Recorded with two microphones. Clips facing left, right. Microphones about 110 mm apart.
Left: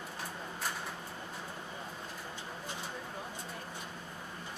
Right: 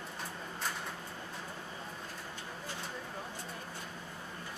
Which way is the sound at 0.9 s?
10° left (ahead or behind).